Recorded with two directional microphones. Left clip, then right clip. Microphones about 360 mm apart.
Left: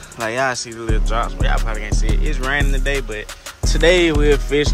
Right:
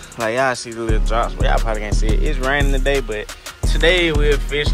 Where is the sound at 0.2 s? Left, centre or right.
Centre.